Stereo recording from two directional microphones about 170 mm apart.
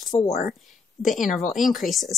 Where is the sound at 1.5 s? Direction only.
Centre (ahead or behind).